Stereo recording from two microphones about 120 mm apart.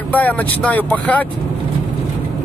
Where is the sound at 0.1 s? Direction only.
15° left (ahead or behind).